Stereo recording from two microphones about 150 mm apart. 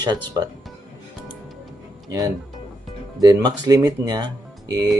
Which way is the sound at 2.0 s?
25° right (ahead or behind).